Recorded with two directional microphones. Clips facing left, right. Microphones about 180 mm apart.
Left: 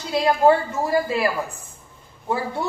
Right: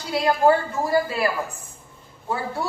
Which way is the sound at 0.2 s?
25° left (ahead or behind).